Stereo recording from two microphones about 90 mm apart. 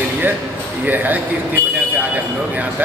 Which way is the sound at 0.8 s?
20° right (ahead or behind).